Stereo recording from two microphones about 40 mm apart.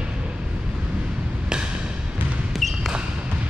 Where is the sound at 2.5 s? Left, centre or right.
Centre.